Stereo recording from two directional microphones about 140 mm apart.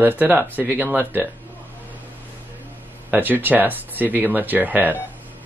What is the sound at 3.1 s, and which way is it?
Speech, 15° right (ahead or behind).